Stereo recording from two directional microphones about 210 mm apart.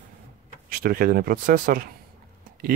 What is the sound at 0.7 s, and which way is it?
Speech, 45° right (ahead or behind).